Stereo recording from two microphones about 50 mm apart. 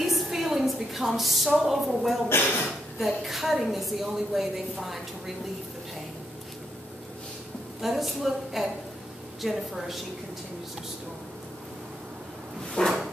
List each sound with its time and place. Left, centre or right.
0.0 s a sound: centre
1.6 s a woman's voice: centre
2.2 s speech: left
3.0 s a woman's voice: centre
7.8 s a woman's voice: centre
12.8 s a sound: centre